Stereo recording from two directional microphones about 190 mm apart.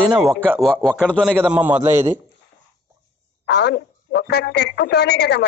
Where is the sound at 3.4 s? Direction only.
60° left (ahead or behind).